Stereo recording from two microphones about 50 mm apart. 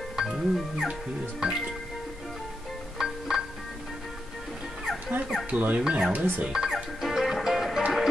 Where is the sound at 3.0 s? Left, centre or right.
Centre.